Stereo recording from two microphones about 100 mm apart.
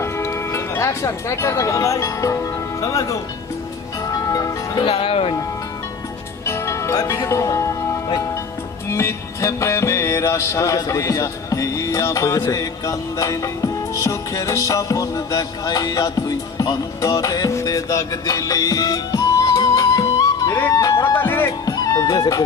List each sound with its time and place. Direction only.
0.0 s speech: 25° left (ahead or behind)
4.1 s music: 35° left (ahead or behind)
4.8 s speech: 75° left (ahead or behind)
6.4 s music: 25° left (ahead or behind)
20.7 s speech: 40° left (ahead or behind)
21.0 s speech: 20° left (ahead or behind)
21.5 s speech: 35° left (ahead or behind)